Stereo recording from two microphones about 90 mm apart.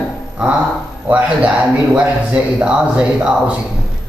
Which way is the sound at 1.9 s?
15° right (ahead or behind).